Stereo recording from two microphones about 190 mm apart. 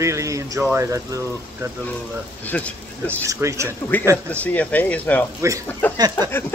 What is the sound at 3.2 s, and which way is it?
Speech, 15° right (ahead or behind).